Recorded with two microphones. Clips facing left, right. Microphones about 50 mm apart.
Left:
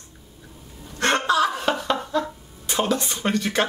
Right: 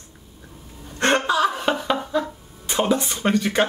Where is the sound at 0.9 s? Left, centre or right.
Right.